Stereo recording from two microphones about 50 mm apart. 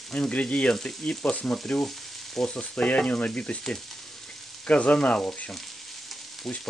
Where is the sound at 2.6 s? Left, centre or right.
Left.